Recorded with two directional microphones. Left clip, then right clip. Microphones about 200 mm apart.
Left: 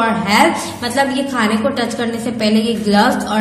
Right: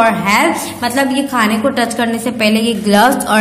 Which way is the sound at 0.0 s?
40° right (ahead or behind).